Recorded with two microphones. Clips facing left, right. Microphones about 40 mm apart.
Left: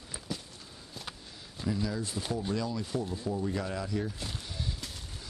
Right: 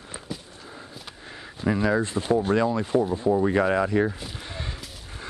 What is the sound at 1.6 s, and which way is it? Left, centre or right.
Speech, right.